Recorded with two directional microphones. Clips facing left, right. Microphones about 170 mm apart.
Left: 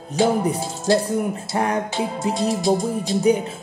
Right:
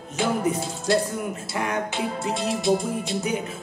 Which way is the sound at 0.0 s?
35° left (ahead or behind).